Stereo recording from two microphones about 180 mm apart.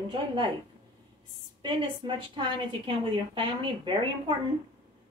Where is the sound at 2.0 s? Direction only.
30° right (ahead or behind).